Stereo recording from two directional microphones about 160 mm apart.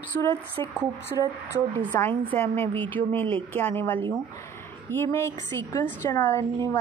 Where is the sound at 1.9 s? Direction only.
20° left (ahead or behind).